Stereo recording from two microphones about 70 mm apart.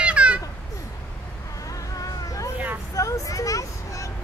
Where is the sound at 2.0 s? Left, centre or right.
Left.